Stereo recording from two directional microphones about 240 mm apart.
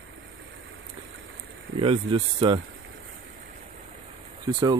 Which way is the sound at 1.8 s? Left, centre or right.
Right.